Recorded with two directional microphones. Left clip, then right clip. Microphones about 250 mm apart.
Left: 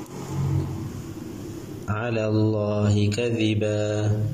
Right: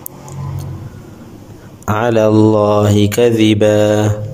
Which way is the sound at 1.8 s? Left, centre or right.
Right.